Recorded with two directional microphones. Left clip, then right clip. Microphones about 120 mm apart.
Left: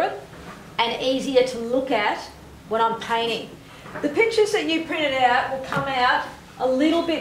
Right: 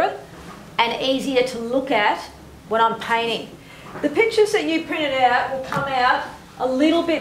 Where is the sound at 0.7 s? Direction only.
20° right (ahead or behind); by 6.0 s centre (ahead or behind).